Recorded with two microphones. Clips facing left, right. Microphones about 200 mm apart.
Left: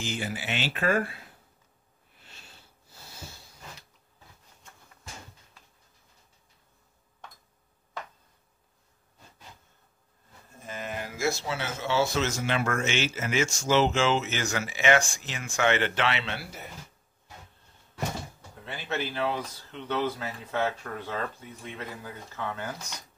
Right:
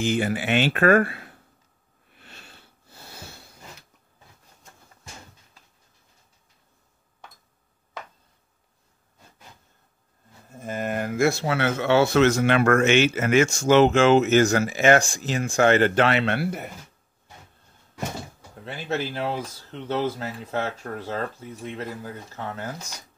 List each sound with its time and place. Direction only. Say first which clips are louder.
0.0 s speech: right 10 dB; 55° right (ahead or behind)
2.1 s sniff: right 5 dB; 60° right (ahead or behind)
3.1 s a sound: right 3 dB; 65° right (ahead or behind)
10.6 s speech: right 9 dB; 50° right (ahead or behind)
18.7 s speech: right 4 dB; 40° right (ahead or behind)